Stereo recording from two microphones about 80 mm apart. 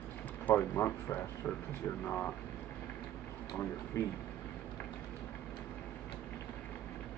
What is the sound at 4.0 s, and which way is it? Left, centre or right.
Speech, left.